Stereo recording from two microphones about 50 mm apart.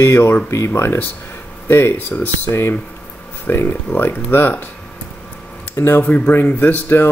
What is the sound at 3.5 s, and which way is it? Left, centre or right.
Speech, left.